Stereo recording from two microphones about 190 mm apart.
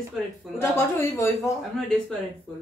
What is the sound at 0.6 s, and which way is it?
Speech, 15° left (ahead or behind).